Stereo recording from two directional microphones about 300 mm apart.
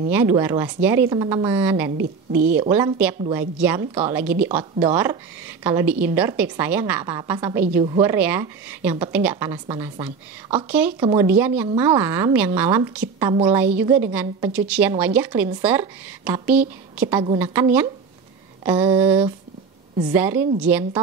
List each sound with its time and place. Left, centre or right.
0.1 s a woman's voice: centre
2.0 s a woman's voice: right
2.7 s a woman's voice: centre
18.6 s mantra: centre
18.9 s a woman's voice: centre